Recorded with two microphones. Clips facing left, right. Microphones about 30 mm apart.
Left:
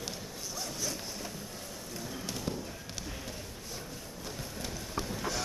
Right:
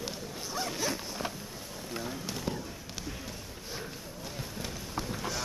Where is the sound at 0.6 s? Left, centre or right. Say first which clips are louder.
Right 5 dB; right.